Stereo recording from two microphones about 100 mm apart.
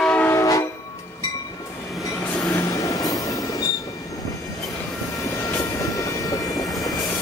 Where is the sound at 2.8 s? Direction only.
35° left (ahead or behind).